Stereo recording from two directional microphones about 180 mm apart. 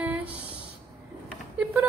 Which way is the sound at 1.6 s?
10° right (ahead or behind).